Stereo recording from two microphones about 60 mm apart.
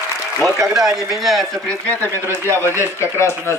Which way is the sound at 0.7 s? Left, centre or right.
Centre.